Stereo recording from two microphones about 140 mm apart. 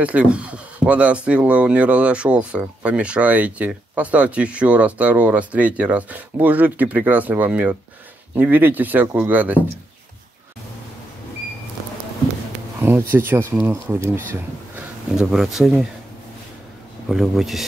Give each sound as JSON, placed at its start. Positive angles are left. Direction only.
{"t": 0.0, "sound": "speech", "side_deg": -10}
{"t": 13.1, "sound": "speech", "side_deg": -15}
{"t": 15.1, "sound": "speech", "side_deg": 0}
{"t": 17.1, "sound": "speech", "side_deg": 0}